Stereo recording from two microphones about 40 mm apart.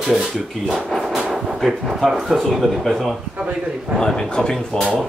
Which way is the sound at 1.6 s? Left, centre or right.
Centre.